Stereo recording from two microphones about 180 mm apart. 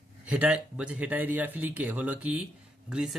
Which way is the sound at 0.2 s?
5° right (ahead or behind).